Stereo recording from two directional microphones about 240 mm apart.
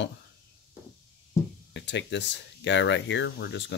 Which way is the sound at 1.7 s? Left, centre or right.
Left.